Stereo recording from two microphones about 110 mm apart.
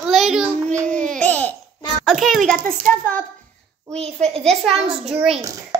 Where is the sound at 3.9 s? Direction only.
70° right (ahead or behind).